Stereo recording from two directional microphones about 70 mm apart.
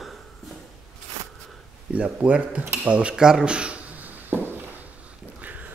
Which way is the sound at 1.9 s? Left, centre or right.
Centre.